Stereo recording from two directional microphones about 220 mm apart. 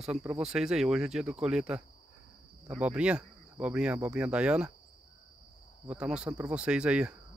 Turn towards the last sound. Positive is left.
turn(degrees=-5)  # may be behind; listen again after turning